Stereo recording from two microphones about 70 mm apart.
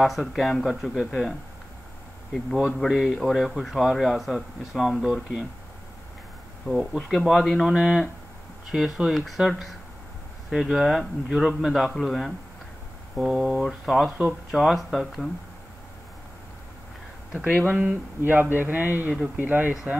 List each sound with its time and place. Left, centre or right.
0.0 s speech: centre
2.9 s speech: centre
6.7 s speech: centre
7.2 s speech: centre
17.3 s speech: centre
17.7 s a sound: right